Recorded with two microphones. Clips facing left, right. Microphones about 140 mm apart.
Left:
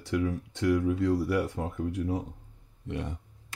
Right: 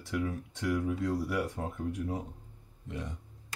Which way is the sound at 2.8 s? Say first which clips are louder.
Left 5 dB; 70° left (ahead or behind).